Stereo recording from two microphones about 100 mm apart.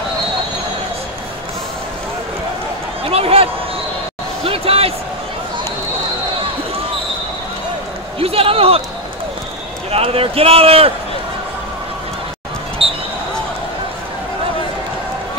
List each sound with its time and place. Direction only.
3.1 s a man's voice: 75° right (ahead or behind)
4.5 s basketball bounce: 75° right (ahead or behind)
8.2 s a sound: 70° right (ahead or behind)
9.8 s speech: 80° right
12.8 s basketball bounce: 70° right (ahead or behind)